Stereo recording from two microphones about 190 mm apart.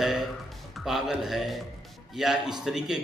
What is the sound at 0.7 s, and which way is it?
Speech, centre (ahead or behind).